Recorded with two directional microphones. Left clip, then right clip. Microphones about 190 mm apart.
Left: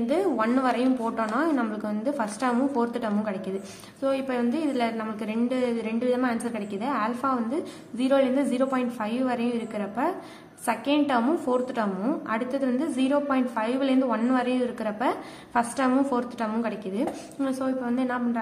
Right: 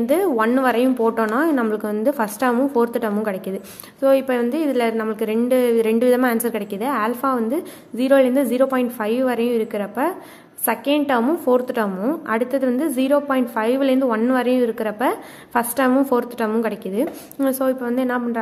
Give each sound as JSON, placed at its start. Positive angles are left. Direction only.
{"t": 0.0, "sound": "a woman's voice", "side_deg": -45}